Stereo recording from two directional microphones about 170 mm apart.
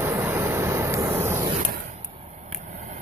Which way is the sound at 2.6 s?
45° right (ahead or behind).